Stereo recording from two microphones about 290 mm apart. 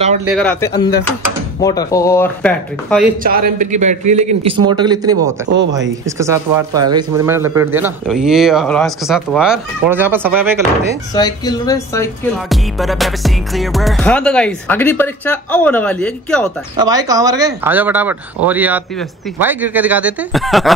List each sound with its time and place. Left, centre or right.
0.2 s music: centre
1.6 s speech: centre
3.5 s a man's voice: right; by 10.6 s centre
11.1 s speech: centre
12.4 s music: centre
16.7 s music: centre